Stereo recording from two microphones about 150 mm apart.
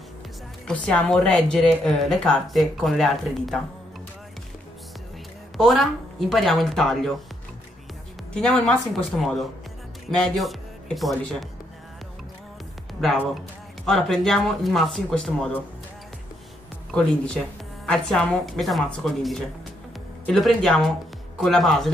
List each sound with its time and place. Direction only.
0.7 s speech: 5° left (ahead or behind)
5.6 s speech: centre (ahead or behind)
8.3 s speech: 5° left (ahead or behind)
13.0 s speech: centre (ahead or behind)
16.9 s speech: 5° left (ahead or behind)